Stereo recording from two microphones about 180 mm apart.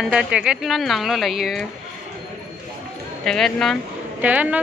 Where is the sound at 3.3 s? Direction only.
5° left (ahead or behind).